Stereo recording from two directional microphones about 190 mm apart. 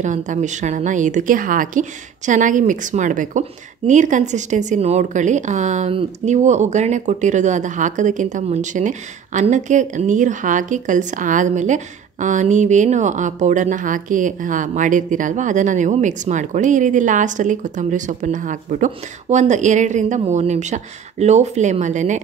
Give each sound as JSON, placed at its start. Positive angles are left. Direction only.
{"t": 0.0, "sound": "a woman's voice", "side_deg": -40}